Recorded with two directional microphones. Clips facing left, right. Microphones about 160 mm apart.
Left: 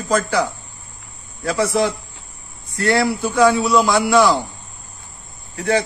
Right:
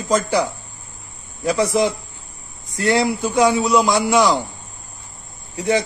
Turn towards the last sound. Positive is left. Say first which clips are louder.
# even
turn(degrees=-20)  # may be behind; listen again after turning